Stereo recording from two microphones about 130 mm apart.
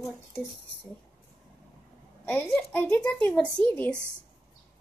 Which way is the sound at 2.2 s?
10° left (ahead or behind).